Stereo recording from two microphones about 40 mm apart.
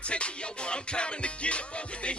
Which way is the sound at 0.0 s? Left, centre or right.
Left.